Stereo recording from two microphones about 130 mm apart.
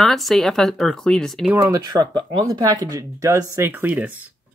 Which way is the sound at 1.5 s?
25° right (ahead or behind).